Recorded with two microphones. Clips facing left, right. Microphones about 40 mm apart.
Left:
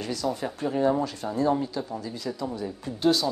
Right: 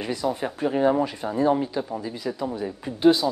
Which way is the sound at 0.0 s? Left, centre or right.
Right.